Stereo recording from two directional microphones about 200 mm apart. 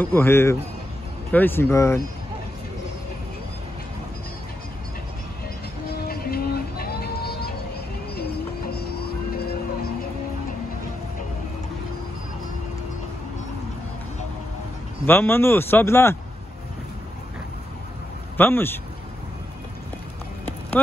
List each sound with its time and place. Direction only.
0.0 s a man's voice: 10° left (ahead or behind)
6.0 s music: 50° left (ahead or behind)
15.0 s a man's voice: 10° left (ahead or behind)
18.4 s a man's voice: 10° left (ahead or behind)